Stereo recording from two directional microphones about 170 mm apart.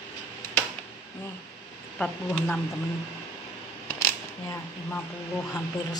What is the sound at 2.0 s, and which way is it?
Speech, 10° left (ahead or behind).